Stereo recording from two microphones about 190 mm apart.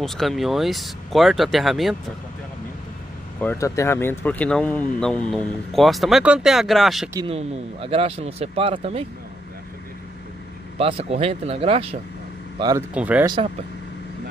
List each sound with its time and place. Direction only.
0.0 s speech: centre (ahead or behind)
3.3 s speech: 15° left (ahead or behind)
7.2 s speech: 30° right (ahead or behind)
10.8 s speech: 30° right (ahead or behind)
12.5 s speech: 20° right (ahead or behind)
12.9 s speech: 5° right (ahead or behind)
13.2 s speech: 20° right (ahead or behind)